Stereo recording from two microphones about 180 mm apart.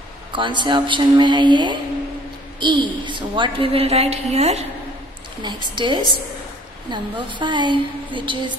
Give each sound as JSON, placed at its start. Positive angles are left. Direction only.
{"t": 0.3, "sound": "a woman's voice", "side_deg": -25}
{"t": 5.4, "sound": "a woman's voice", "side_deg": -25}